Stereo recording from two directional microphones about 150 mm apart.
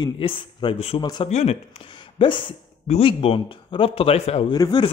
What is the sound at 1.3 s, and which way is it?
A man's voice, 45° left (ahead or behind).